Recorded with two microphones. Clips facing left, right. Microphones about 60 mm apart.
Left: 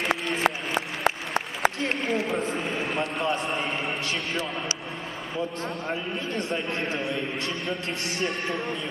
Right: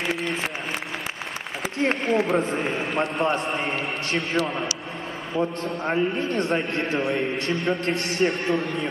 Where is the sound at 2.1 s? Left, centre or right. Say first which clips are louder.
Right 5 dB; right.